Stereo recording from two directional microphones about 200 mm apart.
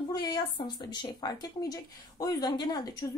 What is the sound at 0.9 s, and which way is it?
Speech, 20° left (ahead or behind).